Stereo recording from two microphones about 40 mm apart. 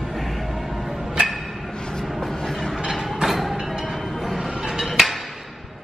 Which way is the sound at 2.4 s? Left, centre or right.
Centre.